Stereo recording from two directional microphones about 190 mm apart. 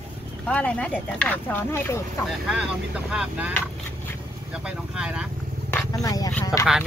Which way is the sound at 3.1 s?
5° right (ahead or behind).